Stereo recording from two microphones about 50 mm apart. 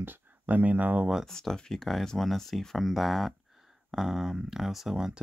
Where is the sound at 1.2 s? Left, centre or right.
Centre.